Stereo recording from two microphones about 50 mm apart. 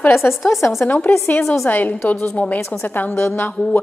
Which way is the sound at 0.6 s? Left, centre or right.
Left.